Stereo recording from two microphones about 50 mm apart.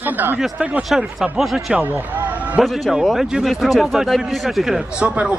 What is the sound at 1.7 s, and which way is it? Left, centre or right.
Speech, right.